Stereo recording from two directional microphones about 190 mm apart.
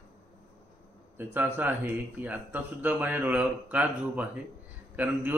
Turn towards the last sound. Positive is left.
turn(degrees=-10)  # may be behind; listen again after turning